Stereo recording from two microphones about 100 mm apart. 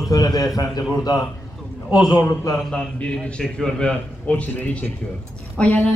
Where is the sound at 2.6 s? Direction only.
5° left (ahead or behind).